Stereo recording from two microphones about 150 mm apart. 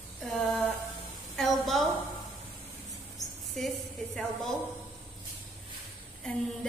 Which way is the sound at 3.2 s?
25° left (ahead or behind).